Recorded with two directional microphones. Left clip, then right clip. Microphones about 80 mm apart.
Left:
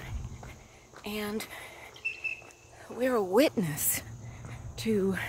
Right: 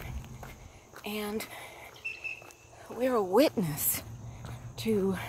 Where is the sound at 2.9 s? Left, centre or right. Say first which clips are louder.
Even; left.